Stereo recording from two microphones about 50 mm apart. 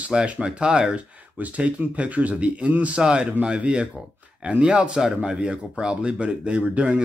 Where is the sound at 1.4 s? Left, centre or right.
Right.